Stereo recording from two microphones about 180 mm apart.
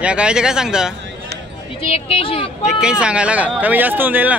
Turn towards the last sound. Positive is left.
turn(degrees=-10)  # may be behind; listen again after turning